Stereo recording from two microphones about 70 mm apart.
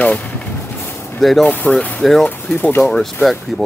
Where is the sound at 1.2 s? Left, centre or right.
Centre.